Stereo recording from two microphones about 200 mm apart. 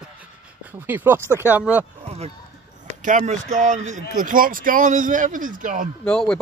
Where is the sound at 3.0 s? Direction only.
35° right (ahead or behind).